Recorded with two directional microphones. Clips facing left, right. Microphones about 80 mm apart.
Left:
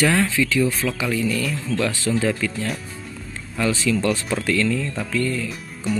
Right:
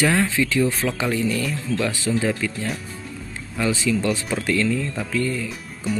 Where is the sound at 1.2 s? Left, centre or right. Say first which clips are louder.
Even; right.